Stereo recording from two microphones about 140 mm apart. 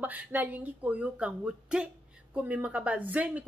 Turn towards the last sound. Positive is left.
turn(degrees=-10)  # may be behind; listen again after turning